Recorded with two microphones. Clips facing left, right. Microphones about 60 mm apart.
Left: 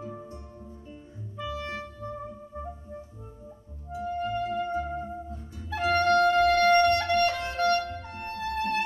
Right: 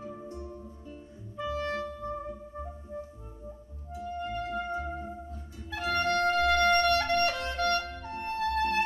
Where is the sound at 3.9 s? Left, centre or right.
Left.